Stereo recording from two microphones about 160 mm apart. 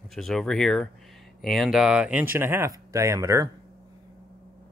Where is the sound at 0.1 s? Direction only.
Centre (ahead or behind); by 3.4 s 20° right (ahead or behind).